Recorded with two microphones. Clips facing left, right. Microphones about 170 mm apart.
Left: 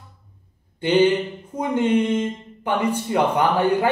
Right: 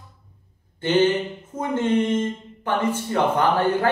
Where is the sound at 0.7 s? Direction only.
15° left (ahead or behind).